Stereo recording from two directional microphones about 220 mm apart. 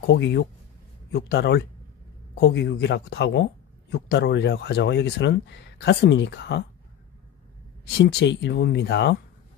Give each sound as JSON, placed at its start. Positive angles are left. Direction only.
{"t": 0.0, "sound": "speech", "side_deg": 50}
{"t": 8.0, "sound": "speech", "side_deg": 50}